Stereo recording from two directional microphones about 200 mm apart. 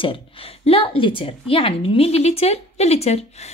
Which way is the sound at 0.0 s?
25° left (ahead or behind).